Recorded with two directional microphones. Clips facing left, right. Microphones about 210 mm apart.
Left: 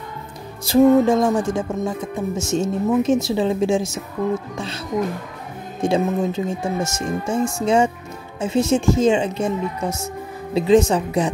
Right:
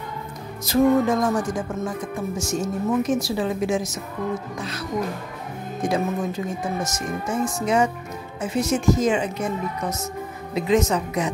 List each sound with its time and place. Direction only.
0.7 s speech: 30° left (ahead or behind)